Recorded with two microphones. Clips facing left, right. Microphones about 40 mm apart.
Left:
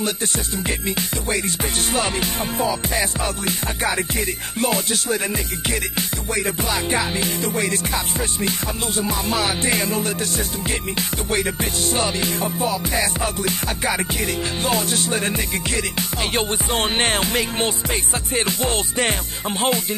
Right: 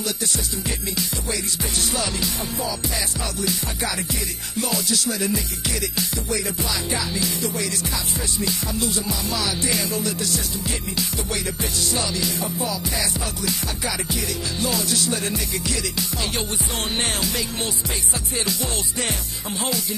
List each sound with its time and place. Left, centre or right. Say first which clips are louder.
0.7 s music: left 4 dB; left